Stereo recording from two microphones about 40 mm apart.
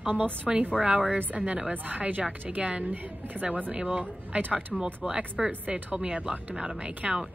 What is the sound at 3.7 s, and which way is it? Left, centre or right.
Speech, right.